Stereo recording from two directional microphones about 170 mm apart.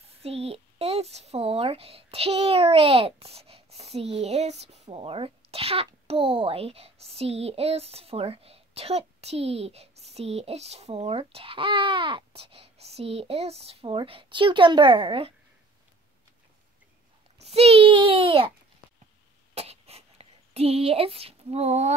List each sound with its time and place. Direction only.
0.2 s a child's voice: 35° right (ahead or behind)
17.4 s a child's voice: 35° right (ahead or behind)
19.5 s a sound: 35° right (ahead or behind)